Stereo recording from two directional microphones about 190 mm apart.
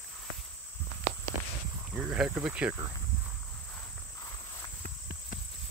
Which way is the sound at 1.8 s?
5° right (ahead or behind).